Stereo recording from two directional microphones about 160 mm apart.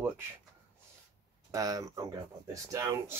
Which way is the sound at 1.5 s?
20° right (ahead or behind).